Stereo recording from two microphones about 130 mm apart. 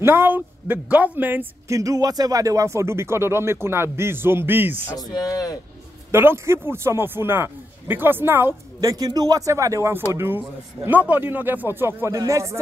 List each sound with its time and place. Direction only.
0.0 s a man's voice: 15° right (ahead or behind)
1.8 s speech: 25° right (ahead or behind)
4.9 s speech: 30° left (ahead or behind)
6.1 s a man's voice: 20° right (ahead or behind)
8.9 s a man's voice: 30° right (ahead or behind)